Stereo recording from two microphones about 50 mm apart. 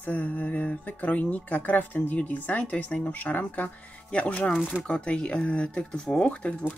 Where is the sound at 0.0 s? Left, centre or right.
Left.